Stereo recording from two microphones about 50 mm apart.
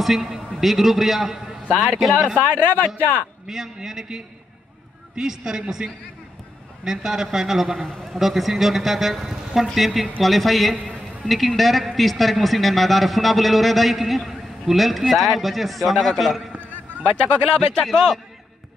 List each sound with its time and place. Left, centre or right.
0.0 s a man's voice: centre
2.3 s a man's voice: left
3.4 s a man's voice: centre
17.6 s a man's voice: centre